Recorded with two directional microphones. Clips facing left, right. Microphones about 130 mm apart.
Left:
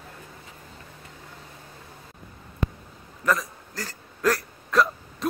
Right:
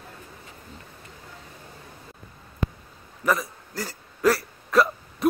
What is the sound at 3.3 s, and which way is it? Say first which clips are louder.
Hiccup: right 1 dB; 10° right (ahead or behind).